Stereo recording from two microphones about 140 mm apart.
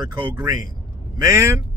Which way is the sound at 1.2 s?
20° right (ahead or behind).